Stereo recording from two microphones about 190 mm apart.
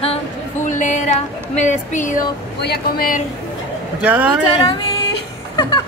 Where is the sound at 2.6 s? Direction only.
55° left (ahead or behind).